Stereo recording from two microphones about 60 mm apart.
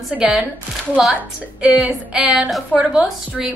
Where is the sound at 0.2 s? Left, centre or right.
Centre.